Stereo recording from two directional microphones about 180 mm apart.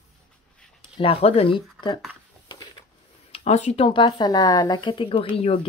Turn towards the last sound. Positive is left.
turn(degrees=30)  # may be behind; listen again after turning